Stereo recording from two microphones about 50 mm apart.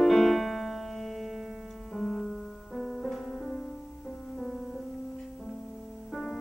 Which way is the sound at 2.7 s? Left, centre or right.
Centre.